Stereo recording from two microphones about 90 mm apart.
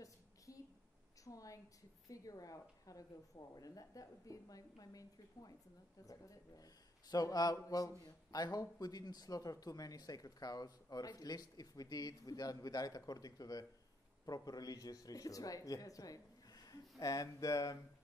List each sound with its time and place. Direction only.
1.2 s a woman's voice: 40° left (ahead or behind)